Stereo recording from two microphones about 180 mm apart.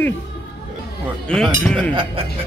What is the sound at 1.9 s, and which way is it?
Speech, 25° right (ahead or behind).